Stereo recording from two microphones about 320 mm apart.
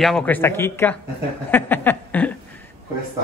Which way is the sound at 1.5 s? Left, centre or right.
Centre.